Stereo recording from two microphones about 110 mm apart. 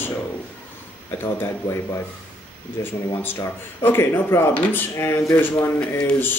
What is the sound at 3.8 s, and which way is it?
A man's voice, 20° left (ahead or behind).